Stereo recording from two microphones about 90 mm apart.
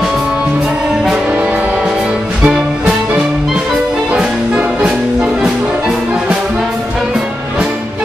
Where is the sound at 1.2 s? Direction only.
15° right (ahead or behind).